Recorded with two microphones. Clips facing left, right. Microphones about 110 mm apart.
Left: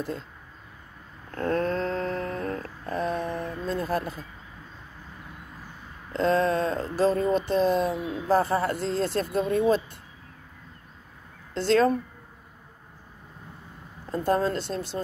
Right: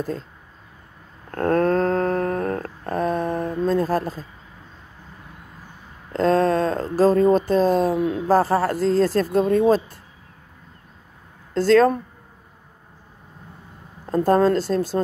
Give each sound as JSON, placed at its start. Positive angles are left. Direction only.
{"t": 1.3, "sound": "a sound", "side_deg": -50}
{"t": 6.1, "sound": "speech", "side_deg": -45}
{"t": 11.5, "sound": "speech", "side_deg": -45}
{"t": 14.0, "sound": "speech", "side_deg": -45}